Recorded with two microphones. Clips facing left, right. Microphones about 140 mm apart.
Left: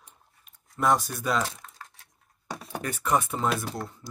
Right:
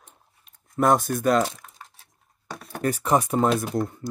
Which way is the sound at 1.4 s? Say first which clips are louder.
Right 3 dB; 25° right (ahead or behind).